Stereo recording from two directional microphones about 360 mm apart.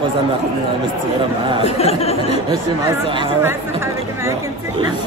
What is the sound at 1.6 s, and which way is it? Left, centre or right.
Speech, centre.